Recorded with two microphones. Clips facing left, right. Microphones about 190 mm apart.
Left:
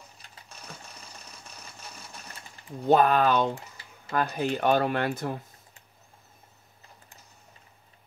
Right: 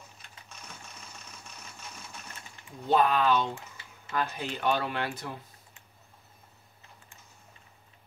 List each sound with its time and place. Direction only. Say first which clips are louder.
0.5 s sewing machine: left 3 dB; 35° left (ahead or behind)
2.9 s speech: left 3 dB; 50° left (ahead or behind)